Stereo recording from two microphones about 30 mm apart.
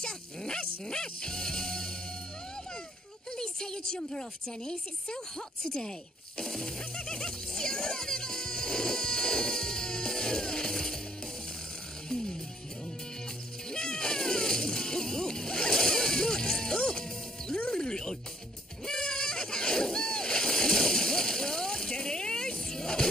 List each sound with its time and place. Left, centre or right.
0.0 s bow-wow: left
0.8 s music: left
3.3 s a woman's voice: left
5.7 s music: left
13.7 s music: left
18.9 s splash: left